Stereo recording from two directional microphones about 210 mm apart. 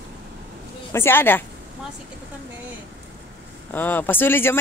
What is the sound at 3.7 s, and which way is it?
Speech, 10° left (ahead or behind).